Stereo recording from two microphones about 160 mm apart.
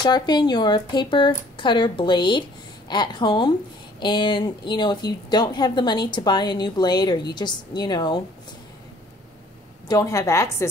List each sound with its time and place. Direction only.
0.0 s a woman's voice: 25° left (ahead or behind)
9.8 s a woman's voice: 20° left (ahead or behind)